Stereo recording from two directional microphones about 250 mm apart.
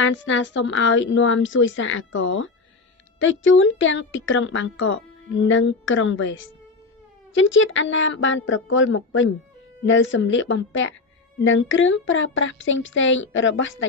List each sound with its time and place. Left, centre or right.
0.0 s speech: left